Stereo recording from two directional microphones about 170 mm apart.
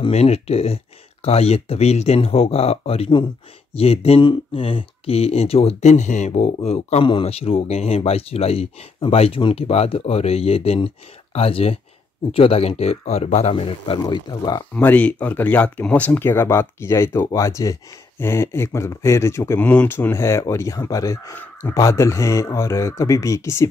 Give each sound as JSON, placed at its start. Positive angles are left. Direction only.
{"t": 0.0, "sound": "speech", "side_deg": 35}
{"t": 14.7, "sound": "speech", "side_deg": 10}